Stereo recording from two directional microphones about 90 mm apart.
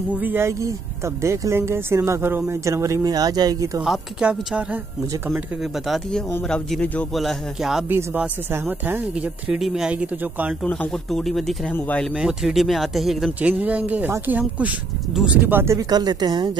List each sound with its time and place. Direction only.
0.1 s speech: 20° right (ahead or behind); by 3.8 s 40° right (ahead or behind)
4.2 s speech: 10° right (ahead or behind)
5.6 s speech: centre (ahead or behind)
7.2 s speech: centre (ahead or behind)
8.5 s speech: 25° right (ahead or behind)
9.1 s speech: 10° right (ahead or behind)
10.6 s speech: 10° left (ahead or behind)
12.1 s speech: 10° right (ahead or behind)
13.4 s speech: 15° right (ahead or behind); by 15.9 s 30° right (ahead or behind)
15.9 s a woman's voice: 50° right (ahead or behind)